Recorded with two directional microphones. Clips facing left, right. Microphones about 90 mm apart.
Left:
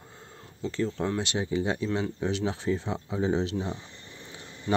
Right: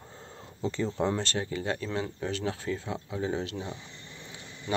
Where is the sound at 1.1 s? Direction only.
15° left (ahead or behind).